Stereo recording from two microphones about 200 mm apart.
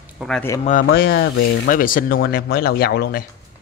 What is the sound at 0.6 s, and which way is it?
Speech, 45° left (ahead or behind).